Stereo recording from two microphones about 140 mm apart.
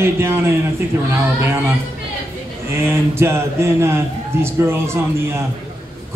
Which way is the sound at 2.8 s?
15° right (ahead or behind).